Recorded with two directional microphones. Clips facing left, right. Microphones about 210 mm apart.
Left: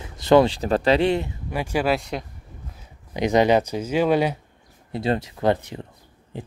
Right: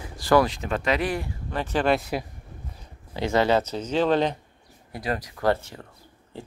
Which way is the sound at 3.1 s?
15° left (ahead or behind).